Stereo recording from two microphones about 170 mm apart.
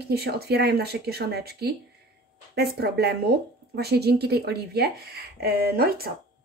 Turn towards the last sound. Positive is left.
turn(degrees=-65)  # may be behind; listen again after turning